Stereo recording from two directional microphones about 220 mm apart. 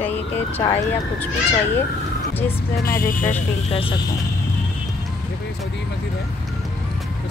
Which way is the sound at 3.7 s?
25° left (ahead or behind).